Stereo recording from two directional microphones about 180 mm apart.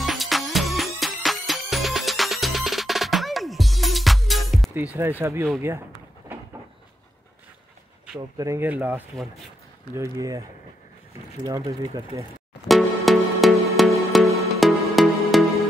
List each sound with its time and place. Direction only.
0.0 s music: centre (ahead or behind)
5.2 s speech: 15° right (ahead or behind)
8.4 s speech: 15° right (ahead or behind)
11.4 s speech: 20° right (ahead or behind)
12.6 s music: centre (ahead or behind)